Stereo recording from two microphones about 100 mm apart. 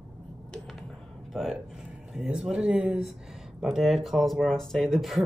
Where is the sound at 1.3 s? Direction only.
5° right (ahead or behind).